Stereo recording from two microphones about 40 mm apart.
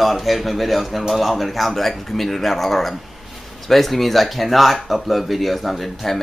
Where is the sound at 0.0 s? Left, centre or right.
Centre.